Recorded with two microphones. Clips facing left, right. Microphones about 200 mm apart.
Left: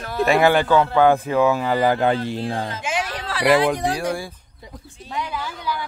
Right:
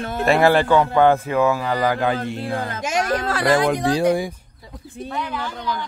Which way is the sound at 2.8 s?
40° right (ahead or behind).